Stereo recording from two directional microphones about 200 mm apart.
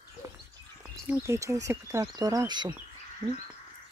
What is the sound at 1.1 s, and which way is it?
Speech, 15° right (ahead or behind).